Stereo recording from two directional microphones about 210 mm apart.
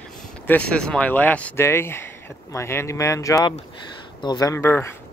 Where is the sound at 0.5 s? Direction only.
5° left (ahead or behind).